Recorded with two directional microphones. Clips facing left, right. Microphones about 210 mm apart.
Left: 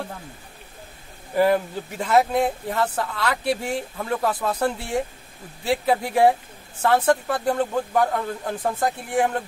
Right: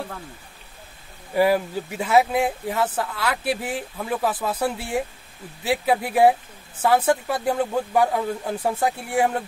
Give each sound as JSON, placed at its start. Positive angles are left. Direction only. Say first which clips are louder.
{"t": 1.3, "sound": "speech", "louder": "even", "side_deg": -5}